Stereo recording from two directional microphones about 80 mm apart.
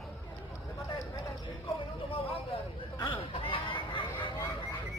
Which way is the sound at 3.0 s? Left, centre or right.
Left.